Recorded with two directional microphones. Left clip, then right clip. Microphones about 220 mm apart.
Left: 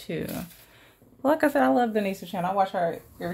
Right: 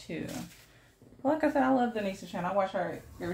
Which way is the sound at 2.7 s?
50° left (ahead or behind).